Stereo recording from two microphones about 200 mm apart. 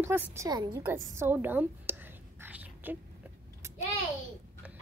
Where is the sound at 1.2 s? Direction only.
10° right (ahead or behind).